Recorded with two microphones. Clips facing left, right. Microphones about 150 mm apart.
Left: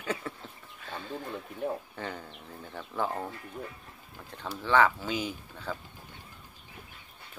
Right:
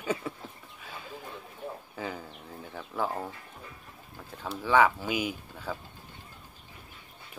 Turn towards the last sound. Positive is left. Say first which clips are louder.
# right 1 dB
turn(degrees=-10)  # may be behind; listen again after turning